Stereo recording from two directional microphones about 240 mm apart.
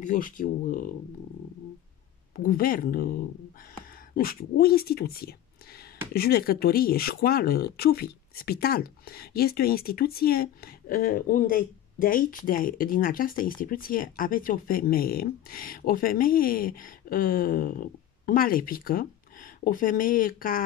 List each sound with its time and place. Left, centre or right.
0.0 s speech: left
2.3 s speech: left